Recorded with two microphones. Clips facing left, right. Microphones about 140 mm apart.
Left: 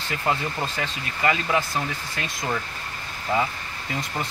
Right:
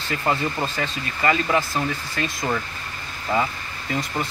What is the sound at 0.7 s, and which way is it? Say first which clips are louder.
Speech: right 3 dB; 10° left (ahead or behind).